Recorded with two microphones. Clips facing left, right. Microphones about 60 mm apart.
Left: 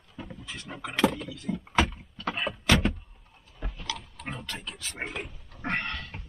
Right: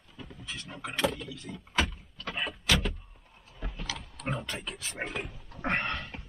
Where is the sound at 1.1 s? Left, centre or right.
Centre.